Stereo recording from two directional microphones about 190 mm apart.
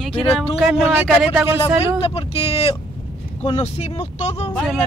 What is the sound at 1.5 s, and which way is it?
Speech, 30° left (ahead or behind).